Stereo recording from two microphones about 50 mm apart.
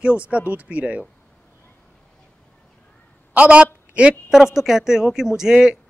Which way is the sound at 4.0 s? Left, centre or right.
Right.